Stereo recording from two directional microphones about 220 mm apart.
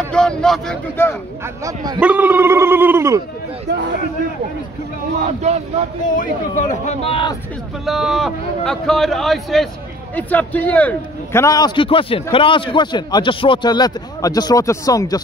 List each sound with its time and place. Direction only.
0.1 s speech: 5° left (ahead or behind)
1.4 s speech: 15° right (ahead or behind)
5.2 s speech: 30° right (ahead or behind)
6.0 s speech: 35° left (ahead or behind)
7.8 s a man's voice: centre (ahead or behind); by 15.1 s 15° left (ahead or behind)